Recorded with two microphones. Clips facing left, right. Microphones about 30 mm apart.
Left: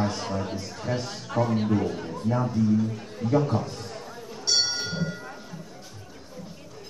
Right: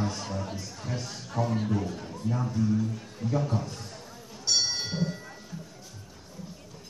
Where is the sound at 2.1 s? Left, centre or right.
Left.